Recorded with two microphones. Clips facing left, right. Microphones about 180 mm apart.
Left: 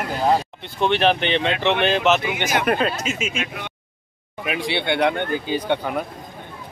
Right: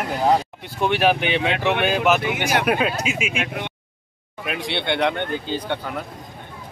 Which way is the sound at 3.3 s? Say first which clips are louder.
Right 2 dB; 60° right (ahead or behind).